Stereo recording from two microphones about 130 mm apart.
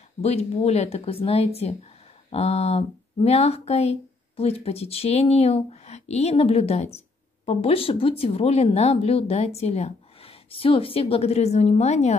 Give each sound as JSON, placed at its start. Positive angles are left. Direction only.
{"t": 0.2, "sound": "speech", "side_deg": 50}